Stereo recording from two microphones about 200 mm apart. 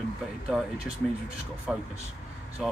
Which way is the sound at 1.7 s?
Centre (ahead or behind).